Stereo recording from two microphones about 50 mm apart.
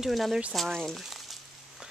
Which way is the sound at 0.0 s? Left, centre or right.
Centre.